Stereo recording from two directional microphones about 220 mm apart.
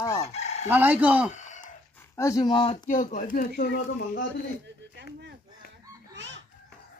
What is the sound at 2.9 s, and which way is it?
Speech, 35° left (ahead or behind).